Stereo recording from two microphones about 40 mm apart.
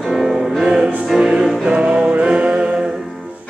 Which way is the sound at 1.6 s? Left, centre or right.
Right.